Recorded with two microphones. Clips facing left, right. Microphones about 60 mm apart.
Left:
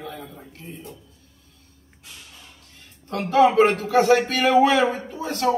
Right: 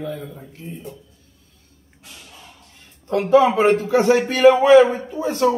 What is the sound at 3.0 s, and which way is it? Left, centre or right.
A man's voice, centre.